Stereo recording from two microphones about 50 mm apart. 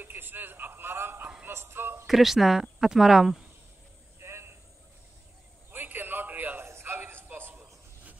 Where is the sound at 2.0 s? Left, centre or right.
Centre.